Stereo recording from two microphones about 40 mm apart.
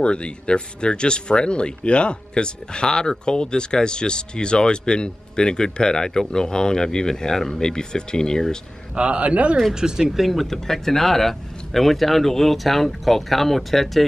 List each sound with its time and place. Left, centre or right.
0.0 s speech: left
8.9 s a man's voice: right
9.8 s speech: centre
10.0 s speech: centre